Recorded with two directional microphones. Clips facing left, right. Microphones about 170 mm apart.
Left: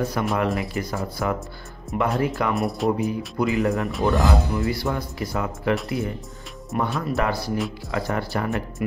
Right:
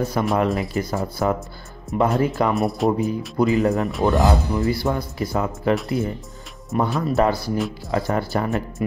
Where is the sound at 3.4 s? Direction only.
40° right (ahead or behind).